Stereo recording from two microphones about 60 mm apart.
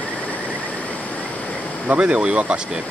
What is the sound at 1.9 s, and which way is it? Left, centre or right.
Speech, centre.